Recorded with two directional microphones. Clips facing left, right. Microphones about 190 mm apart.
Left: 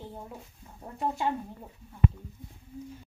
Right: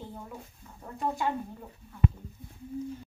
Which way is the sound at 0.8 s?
20° left (ahead or behind).